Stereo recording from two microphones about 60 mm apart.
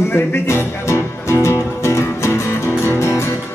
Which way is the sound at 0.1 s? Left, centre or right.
Left.